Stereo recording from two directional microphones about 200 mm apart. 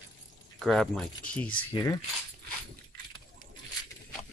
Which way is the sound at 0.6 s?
Centre (ahead or behind).